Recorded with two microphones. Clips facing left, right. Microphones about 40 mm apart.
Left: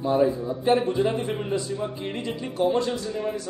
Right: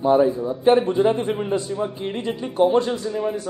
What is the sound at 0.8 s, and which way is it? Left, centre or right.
Speech, right.